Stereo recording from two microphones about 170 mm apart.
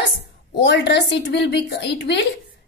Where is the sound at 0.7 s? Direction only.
85° left.